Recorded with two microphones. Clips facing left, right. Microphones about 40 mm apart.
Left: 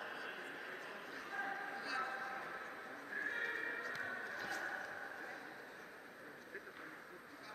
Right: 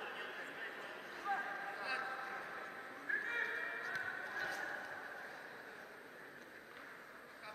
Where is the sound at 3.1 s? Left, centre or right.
Right.